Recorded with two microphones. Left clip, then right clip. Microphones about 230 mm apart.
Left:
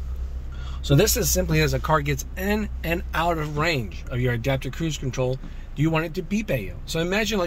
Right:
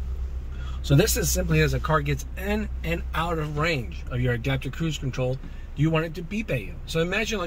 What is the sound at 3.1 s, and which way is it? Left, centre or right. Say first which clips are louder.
Speech: left 4 dB; left.